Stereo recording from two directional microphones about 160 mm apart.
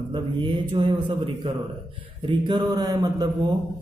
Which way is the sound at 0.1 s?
30° right (ahead or behind).